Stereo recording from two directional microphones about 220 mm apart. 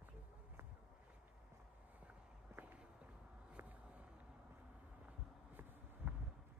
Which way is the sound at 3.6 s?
10° right (ahead or behind).